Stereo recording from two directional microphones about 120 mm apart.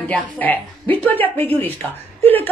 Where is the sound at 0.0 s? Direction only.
15° left (ahead or behind).